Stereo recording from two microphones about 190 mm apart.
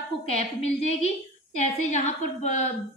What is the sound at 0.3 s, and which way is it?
A woman's voice, 35° left (ahead or behind).